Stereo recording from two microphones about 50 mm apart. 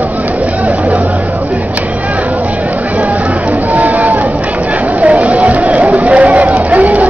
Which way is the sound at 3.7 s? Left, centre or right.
Right.